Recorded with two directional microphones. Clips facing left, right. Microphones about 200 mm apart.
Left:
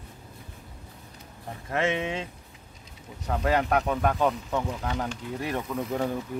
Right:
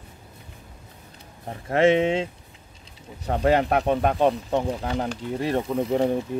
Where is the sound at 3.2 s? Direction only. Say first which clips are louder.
Right 5 dB; 30° right (ahead or behind).